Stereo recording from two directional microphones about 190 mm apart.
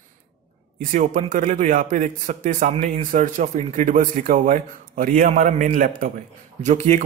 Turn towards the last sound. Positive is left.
turn(degrees=-40)  # may be behind; listen again after turning